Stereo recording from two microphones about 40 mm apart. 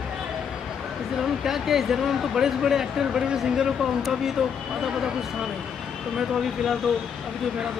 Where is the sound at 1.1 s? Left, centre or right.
Centre.